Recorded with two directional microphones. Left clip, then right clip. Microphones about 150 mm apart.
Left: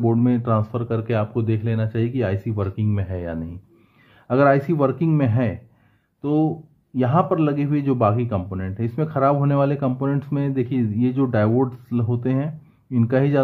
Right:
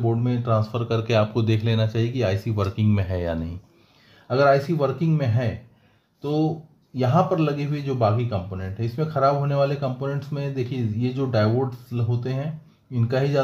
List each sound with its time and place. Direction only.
0.0 s a man's voice: 30° left (ahead or behind)
0.7 s speech: 10° left (ahead or behind)
4.3 s a man's voice: 30° left (ahead or behind)
7.0 s a man's voice: 25° left (ahead or behind)